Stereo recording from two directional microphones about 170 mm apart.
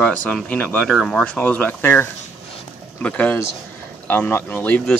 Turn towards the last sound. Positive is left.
turn(degrees=10)  # may be behind; listen again after turning